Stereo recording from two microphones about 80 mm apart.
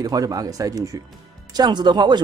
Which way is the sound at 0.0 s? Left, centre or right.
Right.